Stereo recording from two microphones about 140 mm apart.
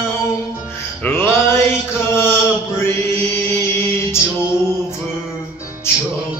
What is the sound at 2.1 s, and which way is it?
Chant, 15° left (ahead or behind).